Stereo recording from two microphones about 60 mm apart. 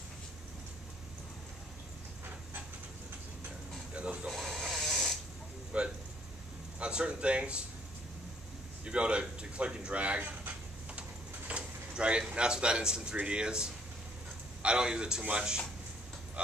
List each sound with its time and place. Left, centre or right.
3.9 s a sound: centre
4.3 s snoring: centre
5.7 s a sound: centre
6.8 s speech: centre
8.8 s a man's voice: centre
11.0 s vehicle: right
12.4 s speech: centre